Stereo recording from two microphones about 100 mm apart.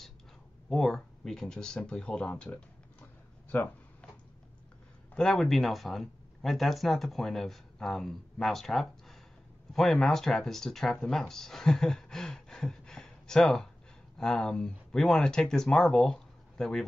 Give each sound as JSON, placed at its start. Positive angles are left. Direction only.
{"t": 0.7, "sound": "speech", "side_deg": 5}
{"t": 5.1, "sound": "speech", "side_deg": 5}